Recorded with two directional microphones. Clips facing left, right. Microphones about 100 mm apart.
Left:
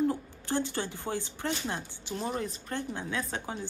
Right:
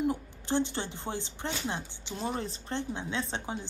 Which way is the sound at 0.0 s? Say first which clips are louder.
Left 2 dB; 20° right (ahead or behind).